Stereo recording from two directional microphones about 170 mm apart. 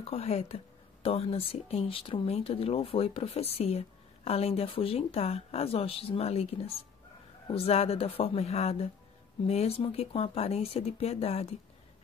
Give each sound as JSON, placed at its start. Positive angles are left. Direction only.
{"t": 0.0, "sound": "speech", "side_deg": 35}